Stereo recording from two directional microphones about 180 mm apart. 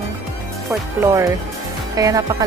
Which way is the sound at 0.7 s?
15° right (ahead or behind).